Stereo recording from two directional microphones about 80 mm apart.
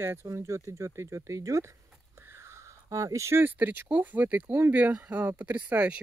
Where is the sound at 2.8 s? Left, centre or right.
Right.